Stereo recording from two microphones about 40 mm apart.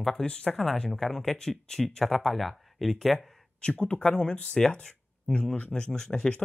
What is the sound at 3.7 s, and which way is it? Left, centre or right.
Speech, left.